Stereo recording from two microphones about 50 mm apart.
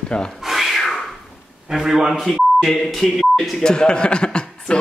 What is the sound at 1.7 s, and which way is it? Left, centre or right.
Speech, centre.